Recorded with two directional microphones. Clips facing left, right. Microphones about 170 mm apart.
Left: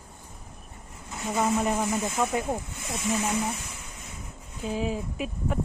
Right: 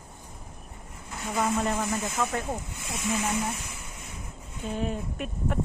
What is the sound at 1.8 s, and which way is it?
Speech, 15° left (ahead or behind).